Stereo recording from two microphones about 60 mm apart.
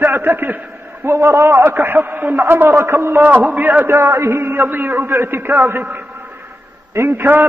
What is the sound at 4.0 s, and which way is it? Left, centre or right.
A man's voice, right.